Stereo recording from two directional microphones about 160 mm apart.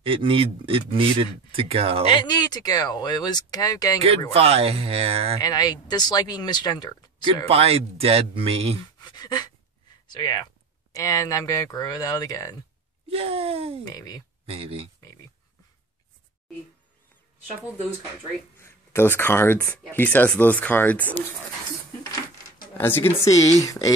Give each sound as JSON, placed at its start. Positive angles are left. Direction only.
{"t": 0.0, "sound": "speech", "side_deg": -35}
{"t": 2.0, "sound": "speech", "side_deg": 30}
{"t": 4.3, "sound": "speech", "side_deg": -35}
{"t": 5.4, "sound": "speech", "side_deg": 25}
{"t": 7.4, "sound": "speech", "side_deg": -40}
{"t": 9.1, "sound": "speech", "side_deg": 25}
{"t": 13.1, "sound": "speech", "side_deg": -35}
{"t": 13.8, "sound": "speech", "side_deg": 20}
{"t": 14.4, "sound": "speech", "side_deg": -35}
{"t": 15.0, "sound": "a sound", "side_deg": 20}
{"t": 18.6, "sound": "speech", "side_deg": 15}
{"t": 22.8, "sound": "speech", "side_deg": 15}